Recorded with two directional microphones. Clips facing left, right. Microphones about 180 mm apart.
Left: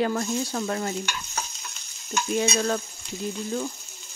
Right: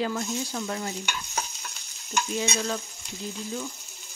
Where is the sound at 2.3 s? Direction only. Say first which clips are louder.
Left 7 dB; 55° left (ahead or behind).